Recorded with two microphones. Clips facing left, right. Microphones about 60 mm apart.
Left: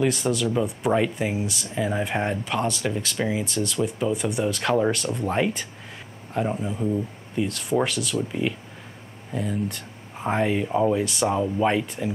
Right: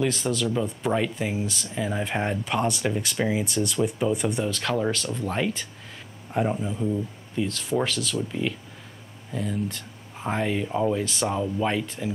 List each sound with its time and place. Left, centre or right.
0.0 s speech: centre
2.4 s speech: centre
4.5 s speech: centre
6.3 s speech: centre